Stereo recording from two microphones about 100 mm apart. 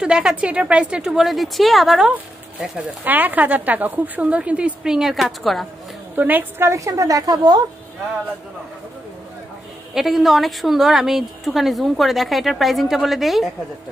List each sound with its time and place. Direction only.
0.0 s a woman's voice: 10° right (ahead or behind)
3.0 s a woman's voice: 15° right (ahead or behind); by 5.7 s centre (ahead or behind)
6.1 s a woman's voice: 15° right (ahead or behind); by 7.6 s 40° right (ahead or behind)
9.9 s a woman's voice: centre (ahead or behind)